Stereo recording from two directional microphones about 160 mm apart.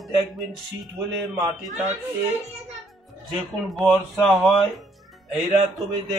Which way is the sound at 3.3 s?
Centre (ahead or behind).